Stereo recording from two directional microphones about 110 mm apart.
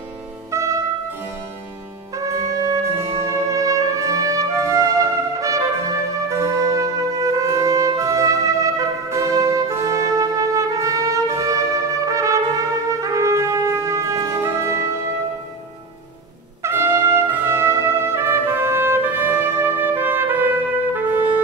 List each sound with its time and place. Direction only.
0.5 s music: 25° right (ahead or behind)
2.1 s brass instrument: 30° right (ahead or behind)
8.0 s music: 30° right (ahead or behind)
12.1 s trumpet: 30° right (ahead or behind)
16.6 s trumpet: 25° right (ahead or behind)